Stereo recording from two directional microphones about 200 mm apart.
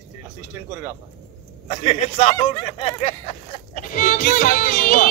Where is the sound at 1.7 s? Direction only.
30° left (ahead or behind).